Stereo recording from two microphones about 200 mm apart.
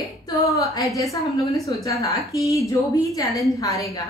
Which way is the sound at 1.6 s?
15° left (ahead or behind).